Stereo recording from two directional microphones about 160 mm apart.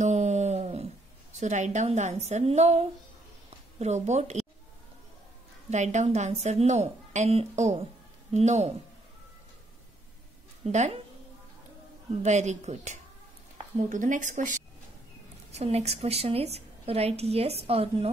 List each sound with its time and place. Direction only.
0.0 s a sound: 45° right (ahead or behind)
1.4 s a woman's voice: 45° right (ahead or behind)
3.4 s a sound: 45° right (ahead or behind)
5.7 s a woman's voice: 45° right (ahead or behind)
10.6 s a woman's voice: 45° right (ahead or behind)
12.2 s a woman's voice: 45° right (ahead or behind)
15.5 s a woman's voice: 40° right (ahead or behind)